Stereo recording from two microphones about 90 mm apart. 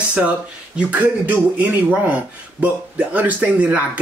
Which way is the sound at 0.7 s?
15° right (ahead or behind).